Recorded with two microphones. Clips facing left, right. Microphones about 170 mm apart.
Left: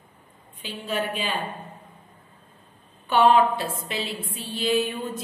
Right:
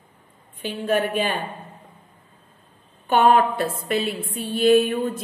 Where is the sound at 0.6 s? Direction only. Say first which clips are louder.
Right 7 dB; 55° right (ahead or behind).